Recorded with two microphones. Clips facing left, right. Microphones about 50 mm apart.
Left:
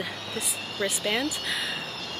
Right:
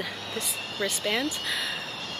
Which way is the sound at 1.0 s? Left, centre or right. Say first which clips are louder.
Right 1 dB; left.